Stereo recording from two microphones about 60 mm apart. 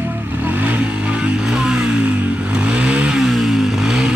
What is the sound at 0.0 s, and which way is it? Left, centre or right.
Vehicle, right.